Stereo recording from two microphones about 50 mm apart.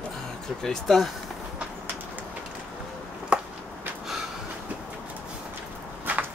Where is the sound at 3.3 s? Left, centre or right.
Right.